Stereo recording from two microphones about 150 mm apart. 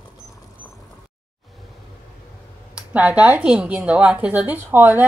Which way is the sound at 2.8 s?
10° right (ahead or behind).